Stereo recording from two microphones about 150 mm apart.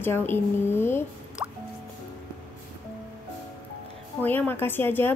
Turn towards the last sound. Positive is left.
turn(degrees=15)  # may be behind; listen again after turning